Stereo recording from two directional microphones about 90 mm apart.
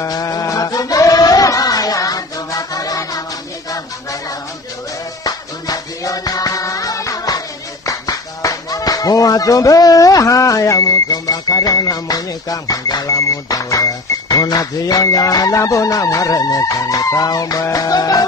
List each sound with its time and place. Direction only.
0.0 s music: 40° left (ahead or behind)
5.2 s music: 45° left (ahead or behind)